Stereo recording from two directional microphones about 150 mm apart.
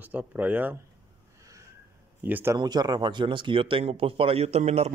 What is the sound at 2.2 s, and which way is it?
Speech, 10° right (ahead or behind).